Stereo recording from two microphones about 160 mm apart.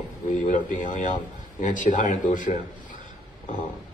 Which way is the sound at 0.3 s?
50° left (ahead or behind).